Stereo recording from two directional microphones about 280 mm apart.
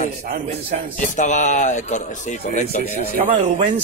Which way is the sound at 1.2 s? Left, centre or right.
Left.